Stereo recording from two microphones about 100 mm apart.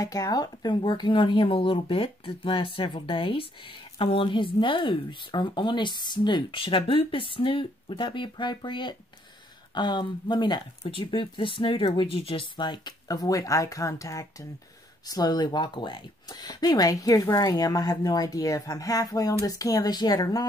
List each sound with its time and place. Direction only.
0.0 s speech: 35° left (ahead or behind)